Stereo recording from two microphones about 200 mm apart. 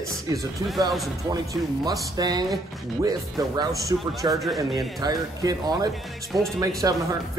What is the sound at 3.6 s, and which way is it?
Speech, 15° right (ahead or behind).